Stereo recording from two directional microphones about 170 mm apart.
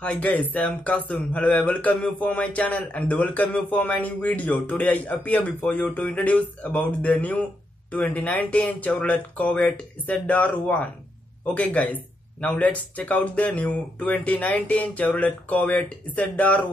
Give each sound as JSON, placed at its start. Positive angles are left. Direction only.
{"t": 0.0, "sound": "speech", "side_deg": 10}